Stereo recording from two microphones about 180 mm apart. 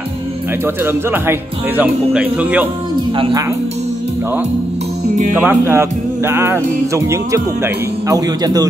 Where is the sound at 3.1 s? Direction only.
25° right (ahead or behind).